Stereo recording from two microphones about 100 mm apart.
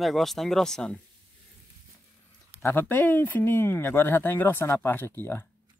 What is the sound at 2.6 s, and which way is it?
Speech, 20° left (ahead or behind).